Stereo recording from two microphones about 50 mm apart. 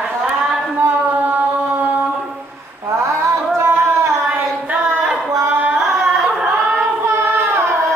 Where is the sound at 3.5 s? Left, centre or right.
Right.